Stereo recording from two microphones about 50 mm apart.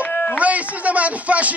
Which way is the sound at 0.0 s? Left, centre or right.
Left.